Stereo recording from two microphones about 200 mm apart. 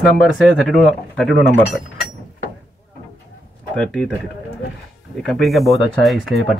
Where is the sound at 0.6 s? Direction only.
Centre (ahead or behind).